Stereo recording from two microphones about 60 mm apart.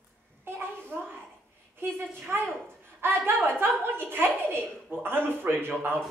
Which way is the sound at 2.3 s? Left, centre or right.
Right.